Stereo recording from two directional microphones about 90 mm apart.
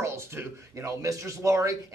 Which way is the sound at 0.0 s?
30° right (ahead or behind).